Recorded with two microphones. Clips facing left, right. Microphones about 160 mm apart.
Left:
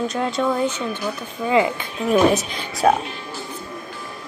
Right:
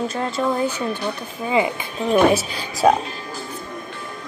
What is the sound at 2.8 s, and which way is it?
Speech, 35° right (ahead or behind).